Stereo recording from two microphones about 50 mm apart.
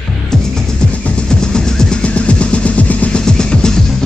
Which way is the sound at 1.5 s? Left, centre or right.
Centre.